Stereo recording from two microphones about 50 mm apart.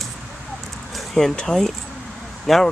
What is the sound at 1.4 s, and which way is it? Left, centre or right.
Speech, centre.